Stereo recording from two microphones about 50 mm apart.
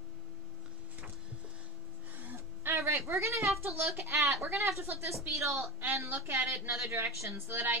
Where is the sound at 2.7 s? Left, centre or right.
Right.